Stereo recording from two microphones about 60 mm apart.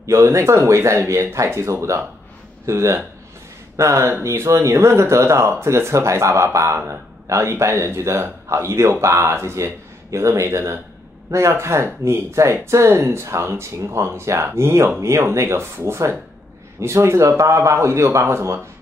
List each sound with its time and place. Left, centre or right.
0.0 s speech: right